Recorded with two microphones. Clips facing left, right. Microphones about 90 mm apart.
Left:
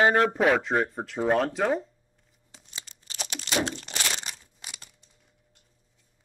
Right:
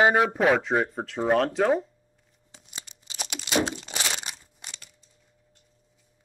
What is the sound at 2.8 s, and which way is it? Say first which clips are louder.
Tearing: left 2 dB; 15° right (ahead or behind).